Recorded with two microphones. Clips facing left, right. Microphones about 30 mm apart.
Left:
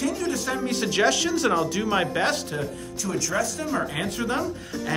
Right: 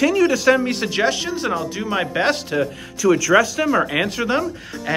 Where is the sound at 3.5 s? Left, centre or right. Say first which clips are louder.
Right 9 dB; right.